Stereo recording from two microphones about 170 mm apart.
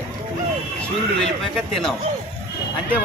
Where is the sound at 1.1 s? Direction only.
Centre (ahead or behind).